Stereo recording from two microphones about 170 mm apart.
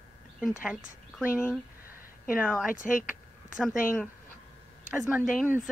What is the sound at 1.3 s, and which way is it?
Speech, 10° left (ahead or behind).